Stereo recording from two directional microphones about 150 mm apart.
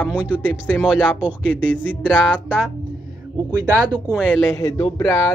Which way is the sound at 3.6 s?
30° right (ahead or behind).